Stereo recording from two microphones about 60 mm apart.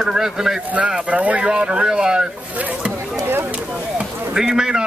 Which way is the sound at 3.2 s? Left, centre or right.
Right.